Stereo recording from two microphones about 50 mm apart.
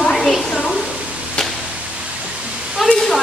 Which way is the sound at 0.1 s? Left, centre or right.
Centre.